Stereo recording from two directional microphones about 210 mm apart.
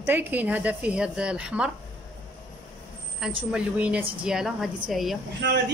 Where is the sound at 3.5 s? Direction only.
5° right (ahead or behind).